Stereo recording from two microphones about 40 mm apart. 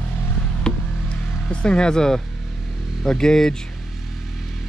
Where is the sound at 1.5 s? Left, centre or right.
Left.